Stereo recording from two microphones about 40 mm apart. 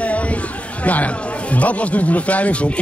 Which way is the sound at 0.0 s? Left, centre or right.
Left.